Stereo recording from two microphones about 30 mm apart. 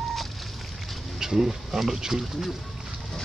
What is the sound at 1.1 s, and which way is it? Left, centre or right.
Speech, centre.